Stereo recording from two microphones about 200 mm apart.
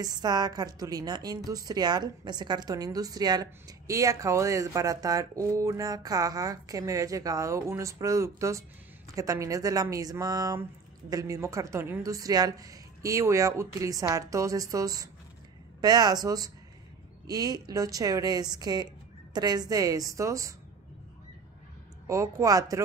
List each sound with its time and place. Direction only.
0.0 s a woman's voice: 20° right (ahead or behind)
22.0 s a woman's voice: 15° right (ahead or behind)